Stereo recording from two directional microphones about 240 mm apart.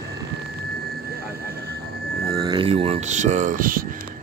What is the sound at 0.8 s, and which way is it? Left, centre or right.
Aircraft, right.